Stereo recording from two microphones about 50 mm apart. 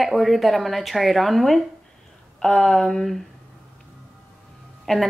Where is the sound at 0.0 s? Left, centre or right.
Centre.